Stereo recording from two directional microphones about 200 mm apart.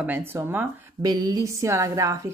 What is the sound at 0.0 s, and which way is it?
Speech, 10° right (ahead or behind).